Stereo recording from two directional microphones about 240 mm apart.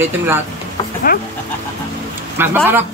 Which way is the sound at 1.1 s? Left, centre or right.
Left.